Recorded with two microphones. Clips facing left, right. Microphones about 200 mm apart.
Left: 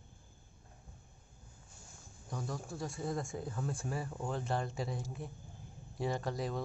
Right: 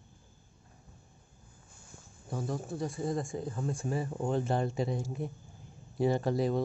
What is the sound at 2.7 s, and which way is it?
Speech, centre (ahead or behind).